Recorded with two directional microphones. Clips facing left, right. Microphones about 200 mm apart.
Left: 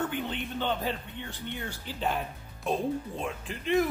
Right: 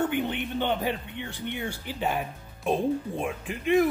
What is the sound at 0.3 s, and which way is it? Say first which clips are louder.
Speech: right 4 dB; 20° right (ahead or behind).